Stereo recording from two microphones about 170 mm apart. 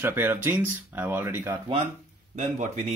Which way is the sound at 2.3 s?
45° right (ahead or behind).